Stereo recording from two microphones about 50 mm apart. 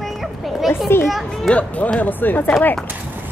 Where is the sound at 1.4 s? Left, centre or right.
Left.